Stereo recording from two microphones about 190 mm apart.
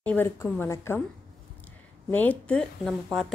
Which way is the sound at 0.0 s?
10° left (ahead or behind).